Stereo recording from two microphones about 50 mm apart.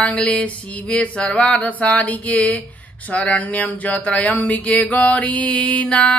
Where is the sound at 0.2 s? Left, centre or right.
Left.